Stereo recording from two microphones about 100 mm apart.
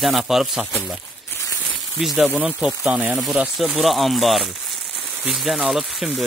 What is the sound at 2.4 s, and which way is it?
Speech, 15° right (ahead or behind).